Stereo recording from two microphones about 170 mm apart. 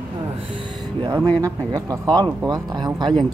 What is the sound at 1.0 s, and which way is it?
Speech, 30° right (ahead or behind).